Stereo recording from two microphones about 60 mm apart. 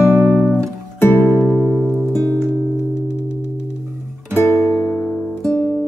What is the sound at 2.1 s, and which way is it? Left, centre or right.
Music, left.